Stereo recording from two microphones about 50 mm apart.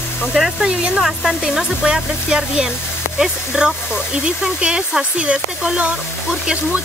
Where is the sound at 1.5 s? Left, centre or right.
Centre.